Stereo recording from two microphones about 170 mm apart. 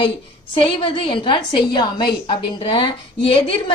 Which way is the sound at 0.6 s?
30° left (ahead or behind).